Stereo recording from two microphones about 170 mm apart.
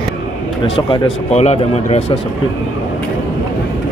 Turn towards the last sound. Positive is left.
turn(degrees=40)  # may be behind; listen again after turning